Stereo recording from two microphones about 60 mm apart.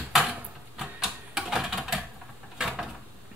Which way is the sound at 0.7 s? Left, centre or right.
Centre.